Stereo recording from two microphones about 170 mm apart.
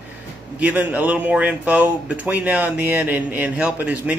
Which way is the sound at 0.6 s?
10° right (ahead or behind).